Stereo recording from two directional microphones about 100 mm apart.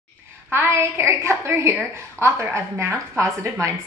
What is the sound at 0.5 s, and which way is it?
A woman's voice, 25° right (ahead or behind).